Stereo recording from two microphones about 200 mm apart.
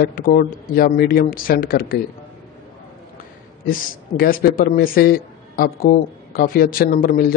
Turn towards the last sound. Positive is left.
turn(degrees=50)  # may be behind; listen again after turning